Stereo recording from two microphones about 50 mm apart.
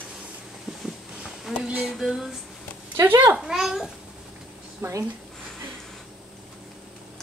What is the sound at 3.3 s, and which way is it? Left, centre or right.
Speech, centre.